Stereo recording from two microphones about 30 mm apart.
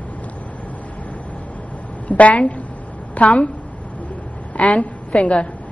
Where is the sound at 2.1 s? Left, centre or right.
Left.